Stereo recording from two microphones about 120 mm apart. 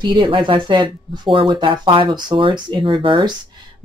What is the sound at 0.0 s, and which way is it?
Speech, 40° right (ahead or behind).